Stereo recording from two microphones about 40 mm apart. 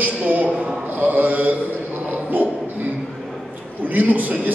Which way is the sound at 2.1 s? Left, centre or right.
Right.